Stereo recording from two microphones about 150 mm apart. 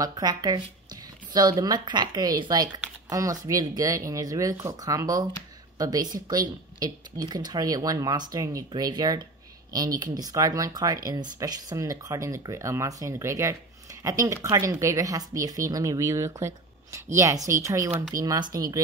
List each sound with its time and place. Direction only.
0.0 s a woman's voice: 25° right (ahead or behind)